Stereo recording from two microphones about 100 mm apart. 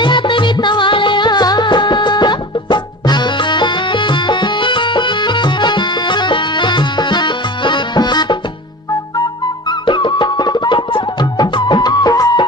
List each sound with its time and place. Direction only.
0.0 s music: 50° left (ahead or behind)
9.7 s music: 50° left (ahead or behind)